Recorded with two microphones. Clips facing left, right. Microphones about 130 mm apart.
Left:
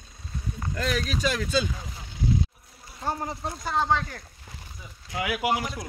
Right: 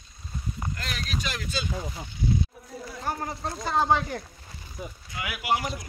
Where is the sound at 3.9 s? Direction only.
15° right (ahead or behind).